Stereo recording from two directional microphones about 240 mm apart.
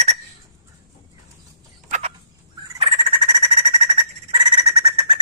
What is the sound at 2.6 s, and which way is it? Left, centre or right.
Frog, right.